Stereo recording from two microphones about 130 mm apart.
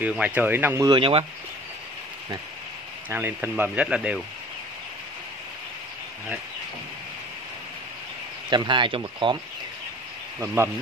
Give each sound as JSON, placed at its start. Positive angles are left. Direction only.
{"t": 0.0, "sound": "speech", "side_deg": -10}
{"t": 0.8, "sound": "speech", "side_deg": -40}
{"t": 3.1, "sound": "speech", "side_deg": -15}
{"t": 8.5, "sound": "speech", "side_deg": -35}
{"t": 10.4, "sound": "speech", "side_deg": -20}